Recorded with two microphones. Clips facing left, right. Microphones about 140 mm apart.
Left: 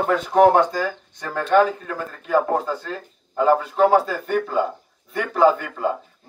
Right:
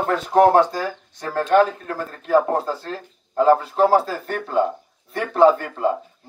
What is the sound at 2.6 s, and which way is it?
Speech, 30° right (ahead or behind).